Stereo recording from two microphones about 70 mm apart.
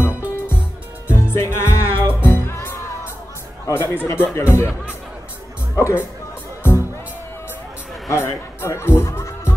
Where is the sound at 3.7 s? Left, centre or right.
Left.